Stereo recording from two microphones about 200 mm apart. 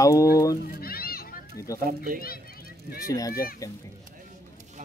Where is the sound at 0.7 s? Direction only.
50° left (ahead or behind).